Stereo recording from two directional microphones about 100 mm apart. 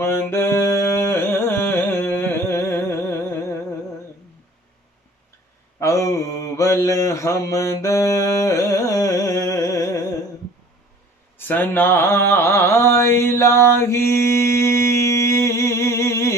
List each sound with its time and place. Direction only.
0.0 s carnatic music: 25° left (ahead or behind)
5.8 s mantra: 35° left (ahead or behind)
11.3 s a sound: 20° left (ahead or behind)